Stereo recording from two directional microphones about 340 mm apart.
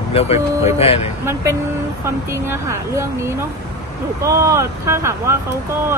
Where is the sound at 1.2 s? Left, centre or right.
Centre.